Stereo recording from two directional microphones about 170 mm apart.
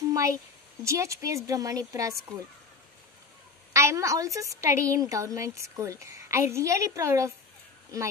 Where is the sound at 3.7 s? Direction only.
15° right (ahead or behind).